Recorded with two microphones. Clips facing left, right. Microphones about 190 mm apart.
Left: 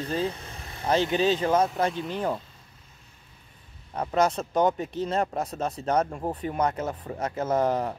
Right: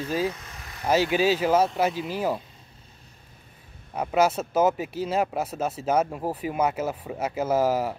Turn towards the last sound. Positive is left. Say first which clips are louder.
# right 2 dB
turn(degrees=-5)  # may be behind; listen again after turning